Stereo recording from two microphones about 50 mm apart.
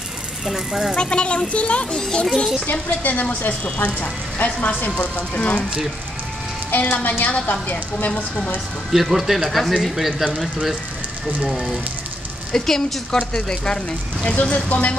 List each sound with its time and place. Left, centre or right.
0.5 s speech: centre
0.9 s speech: left
2.2 s a woman's voice: centre
2.6 s speech: left
6.7 s speech: left
8.9 s speech: centre
11.4 s a woman's voice: centre
14.2 s speech: left